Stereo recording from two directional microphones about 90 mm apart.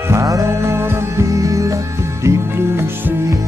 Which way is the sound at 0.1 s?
35° right (ahead or behind).